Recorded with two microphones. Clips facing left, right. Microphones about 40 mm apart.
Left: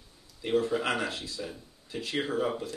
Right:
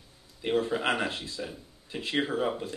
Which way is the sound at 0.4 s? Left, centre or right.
Right.